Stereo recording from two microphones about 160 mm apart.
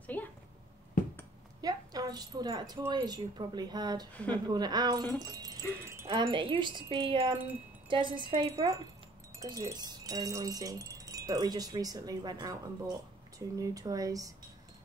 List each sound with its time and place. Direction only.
0.0 s a sound: 10° left (ahead or behind)
1.6 s a woman's voice: 25° right (ahead or behind)
4.1 s a woman's voice: 10° left (ahead or behind)
4.5 s speech: 25° right (ahead or behind)